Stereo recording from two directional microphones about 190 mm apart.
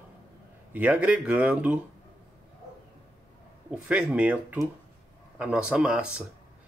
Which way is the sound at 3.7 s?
5° right (ahead or behind).